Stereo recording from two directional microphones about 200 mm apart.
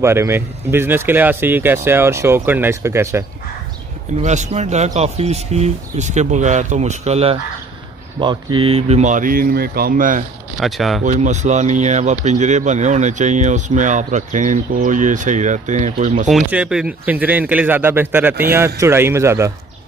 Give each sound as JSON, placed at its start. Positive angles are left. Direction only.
{"t": 0.0, "sound": "speech", "side_deg": -15}
{"t": 4.2, "sound": "speech", "side_deg": -35}
{"t": 8.5, "sound": "speech", "side_deg": -30}
{"t": 10.6, "sound": "speech", "side_deg": 0}
{"t": 11.1, "sound": "speech", "side_deg": -35}
{"t": 16.3, "sound": "speech", "side_deg": -5}